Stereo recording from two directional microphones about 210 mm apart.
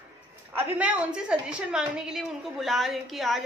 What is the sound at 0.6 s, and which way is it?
A woman's voice, 5° right (ahead or behind).